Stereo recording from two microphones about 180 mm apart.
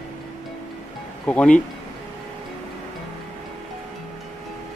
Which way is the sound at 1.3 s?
5° left (ahead or behind).